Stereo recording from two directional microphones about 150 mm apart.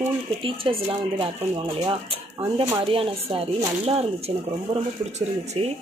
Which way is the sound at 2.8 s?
40° right (ahead or behind).